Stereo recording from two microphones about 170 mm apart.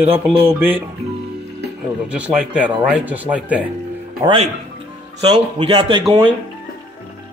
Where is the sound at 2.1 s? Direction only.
5° right (ahead or behind).